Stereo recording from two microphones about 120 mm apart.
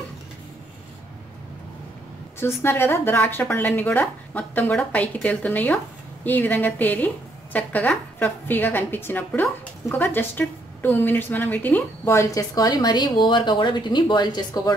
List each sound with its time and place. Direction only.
2.4 s a woman's voice: 20° left (ahead or behind)
12.1 s speech: 25° left (ahead or behind)